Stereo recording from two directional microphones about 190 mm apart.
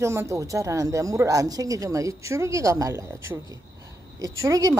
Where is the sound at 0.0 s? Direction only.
15° right (ahead or behind).